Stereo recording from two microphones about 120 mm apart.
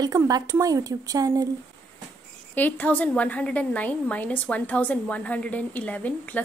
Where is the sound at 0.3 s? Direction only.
30° right (ahead or behind).